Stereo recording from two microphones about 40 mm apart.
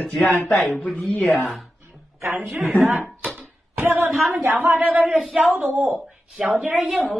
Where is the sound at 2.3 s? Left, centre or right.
Right.